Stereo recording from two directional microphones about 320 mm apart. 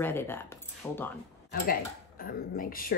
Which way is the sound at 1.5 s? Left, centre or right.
Left.